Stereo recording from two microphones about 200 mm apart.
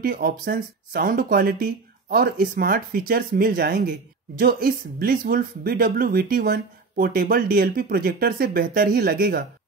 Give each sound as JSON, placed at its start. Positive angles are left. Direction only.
{"t": 0.0, "sound": "speech", "side_deg": -45}